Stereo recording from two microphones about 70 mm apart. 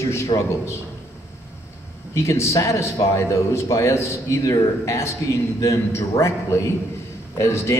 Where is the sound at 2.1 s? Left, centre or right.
Left.